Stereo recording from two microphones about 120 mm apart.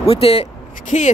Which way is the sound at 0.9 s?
75° left (ahead or behind).